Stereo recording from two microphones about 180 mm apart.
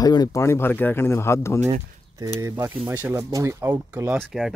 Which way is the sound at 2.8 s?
10° right (ahead or behind).